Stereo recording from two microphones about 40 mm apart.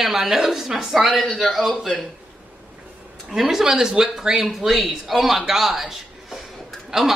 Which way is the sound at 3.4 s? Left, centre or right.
Centre.